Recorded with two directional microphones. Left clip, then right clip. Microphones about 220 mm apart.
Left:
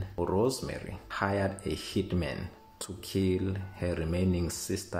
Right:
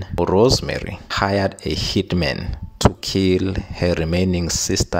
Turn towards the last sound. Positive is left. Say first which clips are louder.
# right 12 dB
turn(degrees=-40)  # may be behind; listen again after turning